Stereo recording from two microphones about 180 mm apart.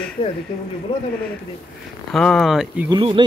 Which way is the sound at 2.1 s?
Centre (ahead or behind).